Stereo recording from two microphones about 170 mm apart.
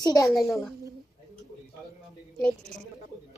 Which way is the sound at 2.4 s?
5° left (ahead or behind).